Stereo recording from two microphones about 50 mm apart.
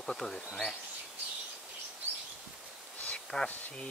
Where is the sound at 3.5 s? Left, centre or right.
Left.